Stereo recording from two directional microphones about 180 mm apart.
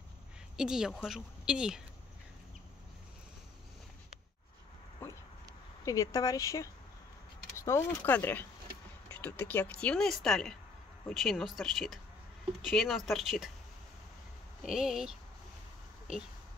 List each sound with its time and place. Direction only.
0.6 s speech: 5° right (ahead or behind)
5.9 s speech: 20° left (ahead or behind); by 13.5 s centre (ahead or behind)
14.6 s speech: 5° right (ahead or behind)